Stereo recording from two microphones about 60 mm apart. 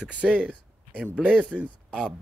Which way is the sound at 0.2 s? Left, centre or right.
Right.